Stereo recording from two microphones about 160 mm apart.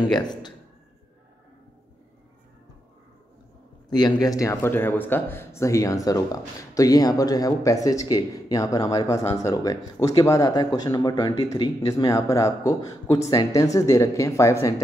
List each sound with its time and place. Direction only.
0.1 s speech: 25° left (ahead or behind)
3.9 s speech: 25° left (ahead or behind)